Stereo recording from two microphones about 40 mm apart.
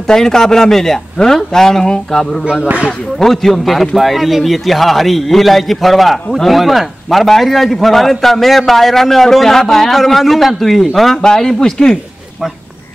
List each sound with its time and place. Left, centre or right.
0.1 s a man's voice: centre
11.2 s speech: centre